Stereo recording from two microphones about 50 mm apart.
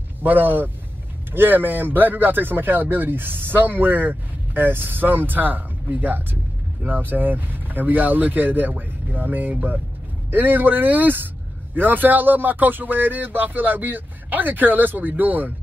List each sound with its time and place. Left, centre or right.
0.2 s speech: right